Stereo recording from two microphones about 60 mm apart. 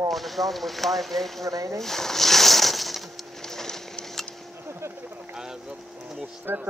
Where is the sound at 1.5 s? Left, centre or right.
Right.